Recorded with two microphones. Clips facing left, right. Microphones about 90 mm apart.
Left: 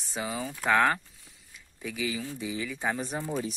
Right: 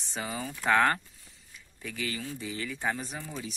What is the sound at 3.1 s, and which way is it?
Speech, 35° left (ahead or behind).